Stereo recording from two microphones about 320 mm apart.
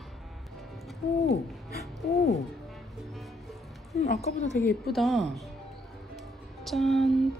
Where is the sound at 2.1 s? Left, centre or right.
Centre.